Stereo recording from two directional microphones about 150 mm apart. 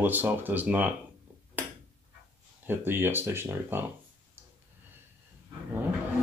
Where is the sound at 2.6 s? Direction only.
15° right (ahead or behind).